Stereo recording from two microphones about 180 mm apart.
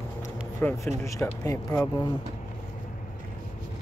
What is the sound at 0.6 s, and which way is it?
Speech, 10° left (ahead or behind).